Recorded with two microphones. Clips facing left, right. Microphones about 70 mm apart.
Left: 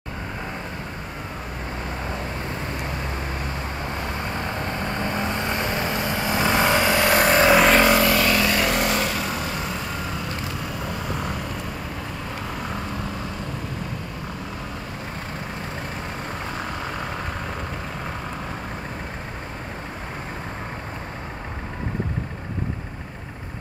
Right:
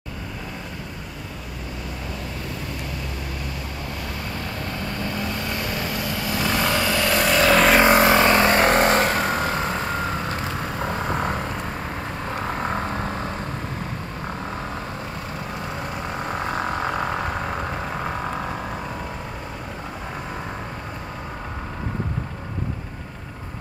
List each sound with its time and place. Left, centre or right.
4.3 s vehicle: left
7.8 s vehicle: right
16.4 s vehicle: right